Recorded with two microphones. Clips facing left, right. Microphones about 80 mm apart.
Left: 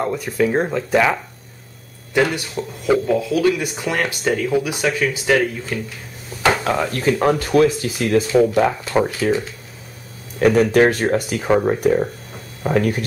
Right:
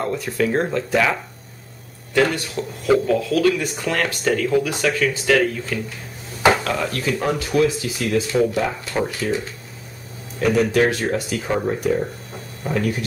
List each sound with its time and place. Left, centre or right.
0.0 s speech: centre
2.1 s speech: centre; by 9.3 s left
10.4 s speech: left